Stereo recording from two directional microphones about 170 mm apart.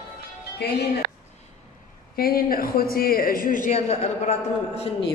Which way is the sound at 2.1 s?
60° left (ahead or behind).